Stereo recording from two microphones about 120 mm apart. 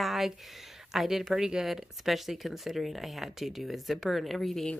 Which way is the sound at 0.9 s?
Centre (ahead or behind).